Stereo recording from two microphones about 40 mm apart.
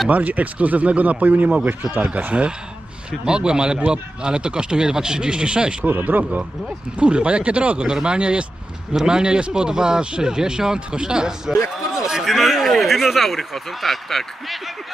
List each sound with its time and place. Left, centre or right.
0.1 s speech: right
3.1 s speech: right
5.9 s speech: right
7.0 s speech: right
12.3 s speech: centre